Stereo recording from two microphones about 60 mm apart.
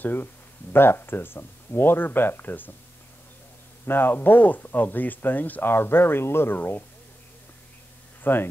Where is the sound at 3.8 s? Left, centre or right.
Left.